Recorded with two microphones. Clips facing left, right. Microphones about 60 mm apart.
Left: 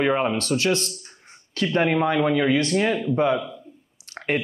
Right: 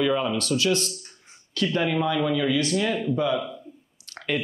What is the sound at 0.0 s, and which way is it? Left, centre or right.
Speech, left.